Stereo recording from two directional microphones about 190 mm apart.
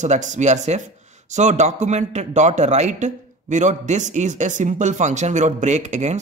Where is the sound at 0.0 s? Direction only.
40° right (ahead or behind).